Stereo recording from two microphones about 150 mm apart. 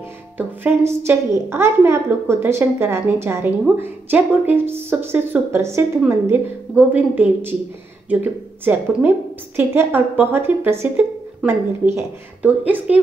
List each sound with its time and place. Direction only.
0.4 s a woman's voice: 15° right (ahead or behind)